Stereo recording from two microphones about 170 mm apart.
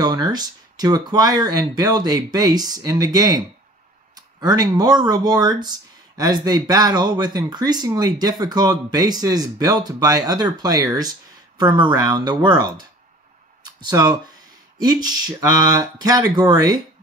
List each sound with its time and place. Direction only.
0.0 s speech: 25° right (ahead or behind)
13.7 s speech: 25° right (ahead or behind)